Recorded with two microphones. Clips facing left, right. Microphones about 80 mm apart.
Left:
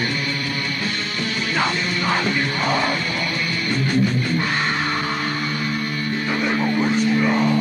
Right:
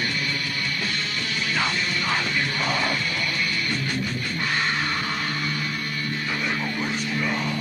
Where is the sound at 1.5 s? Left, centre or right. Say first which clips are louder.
Left 3 dB; left.